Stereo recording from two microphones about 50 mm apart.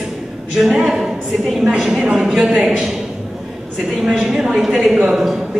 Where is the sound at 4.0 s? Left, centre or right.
Centre.